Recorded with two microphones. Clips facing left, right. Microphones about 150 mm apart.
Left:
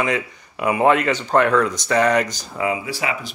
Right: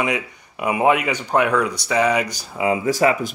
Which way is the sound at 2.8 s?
45° right (ahead or behind).